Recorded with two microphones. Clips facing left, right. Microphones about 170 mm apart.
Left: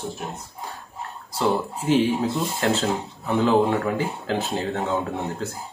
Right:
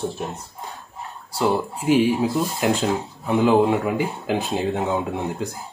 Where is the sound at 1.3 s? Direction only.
10° right (ahead or behind).